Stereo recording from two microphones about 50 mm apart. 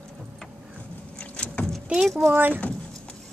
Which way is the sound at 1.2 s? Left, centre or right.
Left.